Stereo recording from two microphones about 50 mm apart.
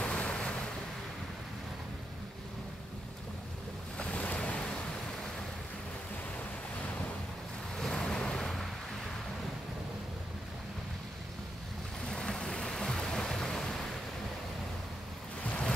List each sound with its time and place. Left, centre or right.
0.0 s a sound: left
4.0 s waves: left
7.7 s waves: centre
12.0 s music: centre